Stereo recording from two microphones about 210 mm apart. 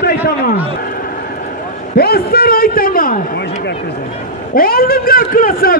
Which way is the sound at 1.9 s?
45° left (ahead or behind).